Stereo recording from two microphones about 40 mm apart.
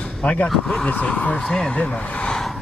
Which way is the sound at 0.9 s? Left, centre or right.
Left.